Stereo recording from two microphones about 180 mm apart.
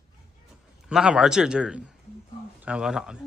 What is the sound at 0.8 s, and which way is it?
A man's voice, 5° right (ahead or behind).